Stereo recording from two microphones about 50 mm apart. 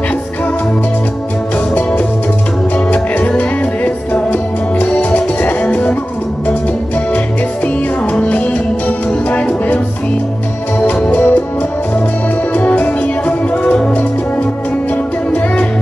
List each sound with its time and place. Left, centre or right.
1.8 s music: left
7.6 s music: left
11.1 s music: left
12.5 s music: left